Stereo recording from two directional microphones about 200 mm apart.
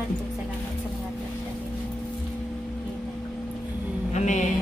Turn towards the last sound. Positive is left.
turn(degrees=35)  # may be behind; listen again after turning